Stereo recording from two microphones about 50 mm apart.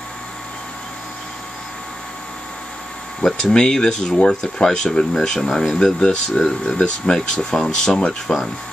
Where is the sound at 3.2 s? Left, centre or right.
Centre.